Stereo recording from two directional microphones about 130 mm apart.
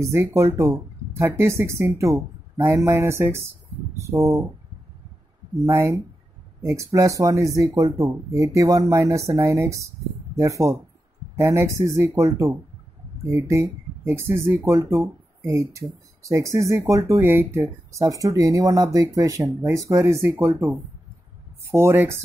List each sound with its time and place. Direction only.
0.0 s speech: 20° right (ahead or behind)
5.7 s speech: 20° right (ahead or behind)